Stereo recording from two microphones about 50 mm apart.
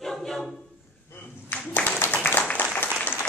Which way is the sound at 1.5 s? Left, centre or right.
Left.